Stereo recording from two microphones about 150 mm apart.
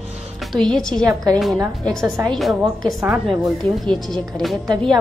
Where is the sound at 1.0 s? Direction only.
25° right (ahead or behind).